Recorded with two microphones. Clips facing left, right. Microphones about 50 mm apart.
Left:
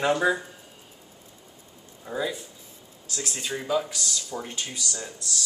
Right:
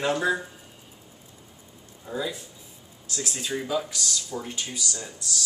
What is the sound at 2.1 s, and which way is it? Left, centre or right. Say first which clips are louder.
Speech: left 1 dB; centre.